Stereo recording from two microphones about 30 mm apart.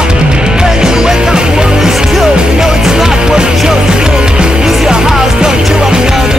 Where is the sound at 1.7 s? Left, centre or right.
Centre.